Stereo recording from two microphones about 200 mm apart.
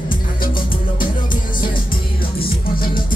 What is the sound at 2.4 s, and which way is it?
Music, 45° left (ahead or behind).